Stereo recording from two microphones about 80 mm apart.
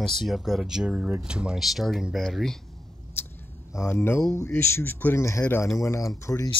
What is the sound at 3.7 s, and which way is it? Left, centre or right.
Speech, left.